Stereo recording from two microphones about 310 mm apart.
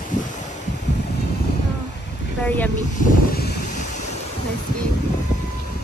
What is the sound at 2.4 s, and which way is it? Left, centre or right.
Speech, centre.